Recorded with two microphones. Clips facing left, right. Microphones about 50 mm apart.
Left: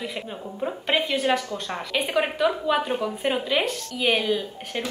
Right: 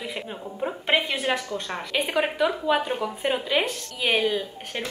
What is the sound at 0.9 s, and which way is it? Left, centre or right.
Speech, right.